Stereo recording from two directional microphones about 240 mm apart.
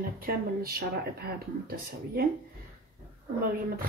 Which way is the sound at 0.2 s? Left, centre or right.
Right.